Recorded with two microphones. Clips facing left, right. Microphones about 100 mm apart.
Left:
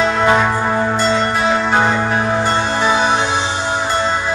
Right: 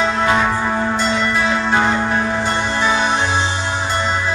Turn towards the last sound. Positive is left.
turn(degrees=55)  # may be behind; listen again after turning